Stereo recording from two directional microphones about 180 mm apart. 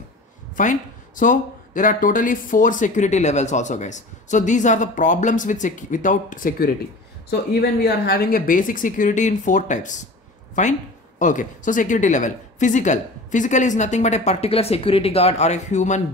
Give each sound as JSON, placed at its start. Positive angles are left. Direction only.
{"t": 0.6, "sound": "speech", "side_deg": 45}
{"t": 7.8, "sound": "speech", "side_deg": 55}
{"t": 11.1, "sound": "speech", "side_deg": 45}